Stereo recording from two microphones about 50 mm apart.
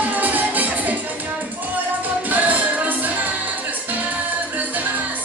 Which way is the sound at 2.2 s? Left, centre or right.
Right.